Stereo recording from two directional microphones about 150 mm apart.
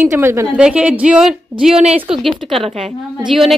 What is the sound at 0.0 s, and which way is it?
Speech, 15° right (ahead or behind).